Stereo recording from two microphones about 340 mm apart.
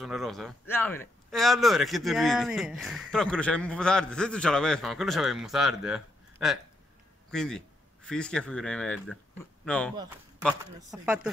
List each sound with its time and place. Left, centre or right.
0.0 s speech: centre
10.4 s speech: centre